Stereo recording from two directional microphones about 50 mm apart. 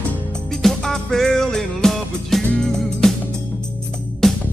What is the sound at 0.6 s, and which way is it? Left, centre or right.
Music, centre.